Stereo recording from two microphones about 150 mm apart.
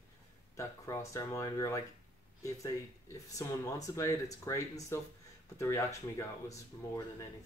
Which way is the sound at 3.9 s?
20° left (ahead or behind).